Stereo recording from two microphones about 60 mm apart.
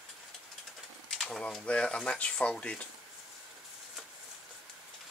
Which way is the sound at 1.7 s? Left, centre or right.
Centre.